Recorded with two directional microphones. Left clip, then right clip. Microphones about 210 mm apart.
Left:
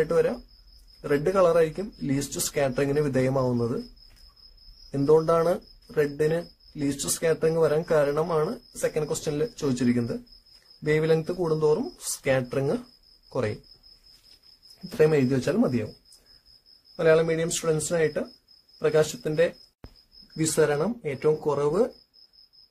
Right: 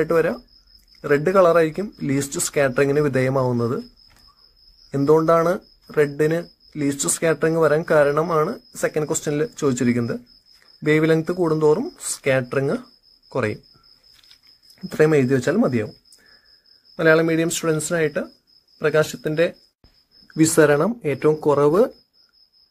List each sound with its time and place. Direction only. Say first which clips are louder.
0.0 s speech: right 4 dB; 20° right (ahead or behind)
4.9 s speech: right 5 dB; 20° right (ahead or behind)
15.0 s speech: right 5 dB; 15° right (ahead or behind)
16.9 s speech: right 4 dB; 20° right (ahead or behind)
20.3 s speech: right 8 dB; 30° right (ahead or behind)